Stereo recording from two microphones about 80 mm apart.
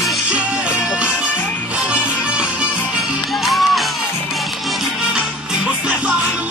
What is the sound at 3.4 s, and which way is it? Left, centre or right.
Music, centre.